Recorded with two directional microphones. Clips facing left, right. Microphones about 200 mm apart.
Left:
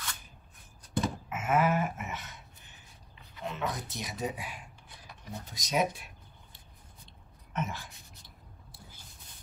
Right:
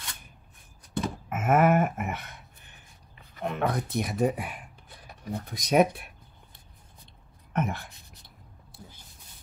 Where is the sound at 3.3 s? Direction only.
55° right (ahead or behind).